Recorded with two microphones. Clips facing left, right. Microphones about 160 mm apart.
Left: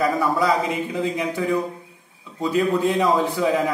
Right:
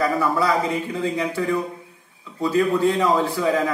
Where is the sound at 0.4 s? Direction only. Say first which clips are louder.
Even; 15° left (ahead or behind).